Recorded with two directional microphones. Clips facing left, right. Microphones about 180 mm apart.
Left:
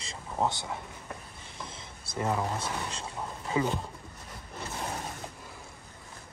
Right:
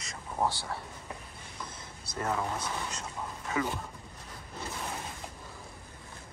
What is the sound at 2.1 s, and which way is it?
Speech, 20° left (ahead or behind).